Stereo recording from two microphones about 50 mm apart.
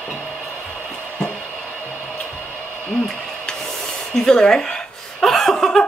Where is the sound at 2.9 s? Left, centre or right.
Centre.